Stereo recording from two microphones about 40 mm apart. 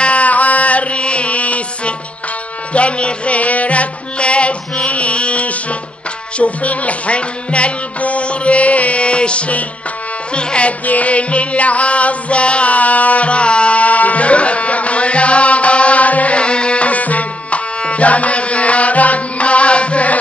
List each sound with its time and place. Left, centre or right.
0.0 s music: left
10.9 s music: left